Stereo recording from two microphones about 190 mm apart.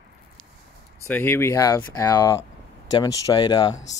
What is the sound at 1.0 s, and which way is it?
Speech, 10° left (ahead or behind).